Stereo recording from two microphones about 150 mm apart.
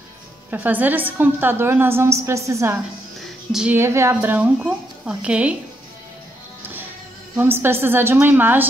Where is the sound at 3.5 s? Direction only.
5° right (ahead or behind).